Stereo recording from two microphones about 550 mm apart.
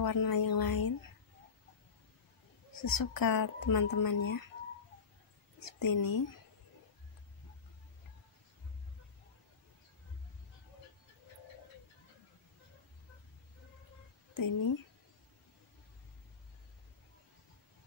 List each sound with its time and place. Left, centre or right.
0.0 s speech: left
2.7 s speech: left
5.6 s speech: left
14.3 s speech: left